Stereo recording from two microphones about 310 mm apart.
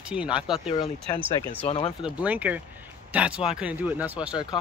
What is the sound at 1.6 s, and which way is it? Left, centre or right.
Speech, centre.